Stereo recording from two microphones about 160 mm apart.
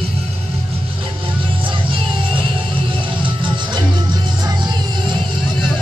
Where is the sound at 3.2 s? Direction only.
30° right (ahead or behind).